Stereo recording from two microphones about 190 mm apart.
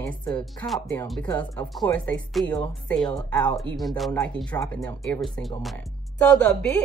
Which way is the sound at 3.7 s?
Centre (ahead or behind).